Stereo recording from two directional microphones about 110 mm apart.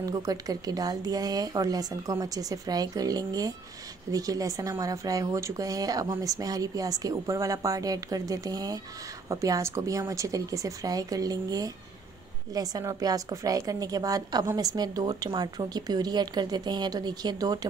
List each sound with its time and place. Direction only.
0.0 s a woman's voice: 35° right (ahead or behind)